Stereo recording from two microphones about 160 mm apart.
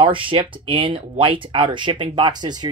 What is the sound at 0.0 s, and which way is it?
Speech, 30° right (ahead or behind).